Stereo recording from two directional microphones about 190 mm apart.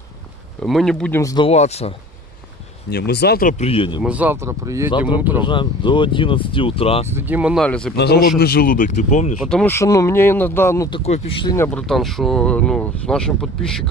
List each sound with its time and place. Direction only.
0.6 s speech: centre (ahead or behind)
1.2 s speech: 20° left (ahead or behind)
1.5 s speech: 35° left (ahead or behind)
2.9 s speech: 60° left (ahead or behind); by 4.0 s 30° left (ahead or behind)
4.0 s speech: 5° right (ahead or behind)
5.4 s speech: 25° left (ahead or behind)
7.1 s speech: 10° right (ahead or behind)
7.6 s speech: 5° left (ahead or behind)
7.9 s a man's voice: 60° left (ahead or behind); by 9.3 s 40° left (ahead or behind)
9.5 s speech: 10° left (ahead or behind)
10.9 s speech: 30° left (ahead or behind)
11.5 s speech: 10° left (ahead or behind)
11.9 s speech: centre (ahead or behind)